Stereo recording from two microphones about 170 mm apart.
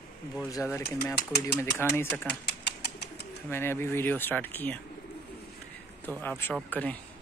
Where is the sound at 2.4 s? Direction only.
75° left (ahead or behind).